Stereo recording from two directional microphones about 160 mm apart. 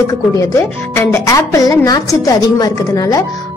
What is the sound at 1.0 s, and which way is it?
Speech, 15° left (ahead or behind).